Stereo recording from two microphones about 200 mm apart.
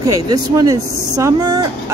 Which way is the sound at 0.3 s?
15° right (ahead or behind).